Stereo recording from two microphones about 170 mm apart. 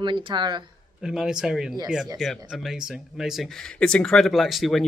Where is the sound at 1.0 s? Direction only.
5° right (ahead or behind).